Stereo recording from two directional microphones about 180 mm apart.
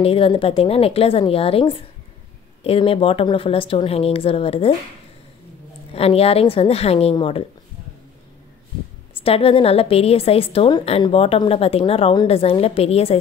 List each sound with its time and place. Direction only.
0.0 s a woman's voice: 30° left (ahead or behind)
5.9 s a woman's voice: 35° left (ahead or behind)
9.2 s a woman's voice: 30° left (ahead or behind)